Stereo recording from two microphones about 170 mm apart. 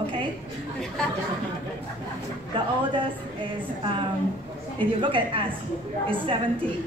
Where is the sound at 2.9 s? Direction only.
30° right (ahead or behind).